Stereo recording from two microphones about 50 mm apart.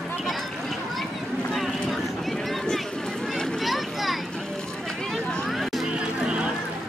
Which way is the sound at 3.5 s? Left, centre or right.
Centre.